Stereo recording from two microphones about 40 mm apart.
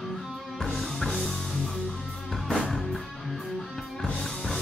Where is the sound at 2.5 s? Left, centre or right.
Centre.